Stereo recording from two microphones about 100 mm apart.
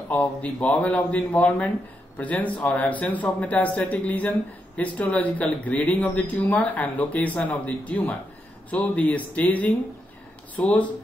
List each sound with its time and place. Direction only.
0.1 s speech: 10° left (ahead or behind)